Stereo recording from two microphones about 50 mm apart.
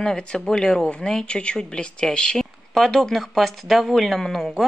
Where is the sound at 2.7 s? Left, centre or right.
Centre.